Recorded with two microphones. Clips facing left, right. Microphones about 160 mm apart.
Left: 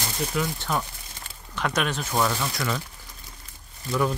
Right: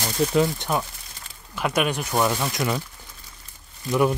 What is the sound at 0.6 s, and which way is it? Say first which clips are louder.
Speech: right 2 dB; 15° right (ahead or behind).